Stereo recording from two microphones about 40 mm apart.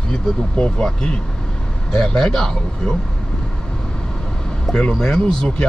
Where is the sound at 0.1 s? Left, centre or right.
Left.